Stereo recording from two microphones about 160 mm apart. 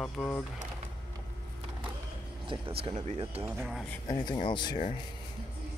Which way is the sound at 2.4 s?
35° right (ahead or behind).